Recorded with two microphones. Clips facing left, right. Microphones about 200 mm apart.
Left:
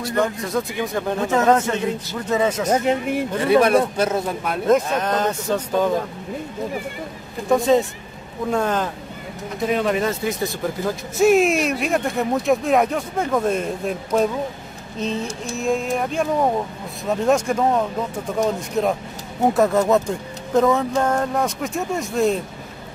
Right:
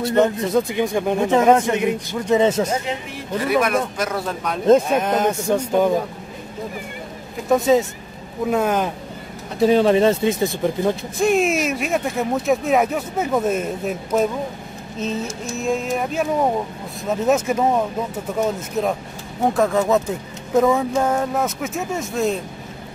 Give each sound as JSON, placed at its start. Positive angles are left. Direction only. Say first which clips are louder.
{"t": 0.0, "sound": "speech", "louder": "right 5 dB", "side_deg": -25}
{"t": 2.7, "sound": "speech", "louder": "left 5 dB", "side_deg": 50}
{"t": 3.3, "sound": "speech", "louder": "left 3 dB", "side_deg": 30}
{"t": 4.8, "sound": "speech", "louder": "right 3 dB", "side_deg": -10}
{"t": 7.4, "sound": "speech", "louder": "right 1 dB", "side_deg": 0}
{"t": 9.6, "sound": "speech", "louder": "right 6 dB", "side_deg": -30}
{"t": 11.1, "sound": "speech", "louder": "left 4 dB", "side_deg": 0}
{"t": 15.5, "sound": "speech", "louder": "left 1 dB", "side_deg": 0}